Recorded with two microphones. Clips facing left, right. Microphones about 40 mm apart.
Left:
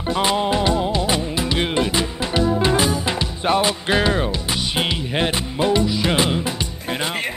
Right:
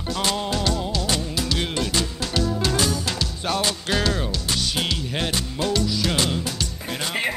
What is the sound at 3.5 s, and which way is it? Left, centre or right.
Speech, left.